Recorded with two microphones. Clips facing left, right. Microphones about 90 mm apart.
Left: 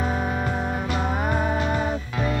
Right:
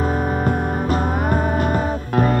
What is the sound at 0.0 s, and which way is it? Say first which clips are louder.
Music: right 5 dB; 45° right (ahead or behind).